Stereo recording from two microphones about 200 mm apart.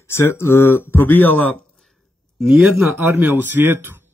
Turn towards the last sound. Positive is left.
turn(degrees=-10)  # may be behind; listen again after turning